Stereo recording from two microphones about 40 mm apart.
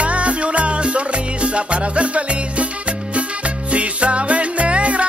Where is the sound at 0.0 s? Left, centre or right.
Right.